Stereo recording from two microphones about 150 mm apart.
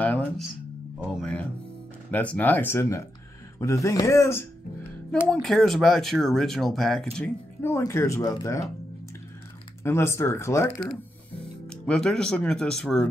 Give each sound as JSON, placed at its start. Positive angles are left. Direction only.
{"t": 0.0, "sound": "music", "side_deg": 10}
{"t": 0.9, "sound": "speech", "side_deg": 5}
{"t": 5.3, "sound": "speech", "side_deg": 0}
{"t": 7.6, "sound": "speech", "side_deg": 20}
{"t": 9.8, "sound": "speech", "side_deg": 15}
{"t": 11.6, "sound": "speech", "side_deg": 5}